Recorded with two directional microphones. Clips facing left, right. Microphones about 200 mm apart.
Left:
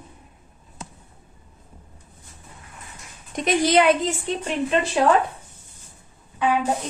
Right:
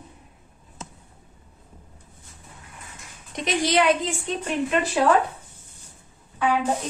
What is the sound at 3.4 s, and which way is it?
Speech, 50° left (ahead or behind).